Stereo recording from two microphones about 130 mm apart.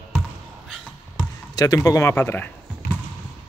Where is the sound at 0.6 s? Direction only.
5° right (ahead or behind).